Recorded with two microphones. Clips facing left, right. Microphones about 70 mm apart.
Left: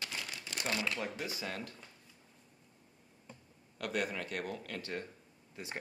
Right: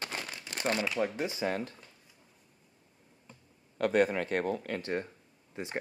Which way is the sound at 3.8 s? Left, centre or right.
Right.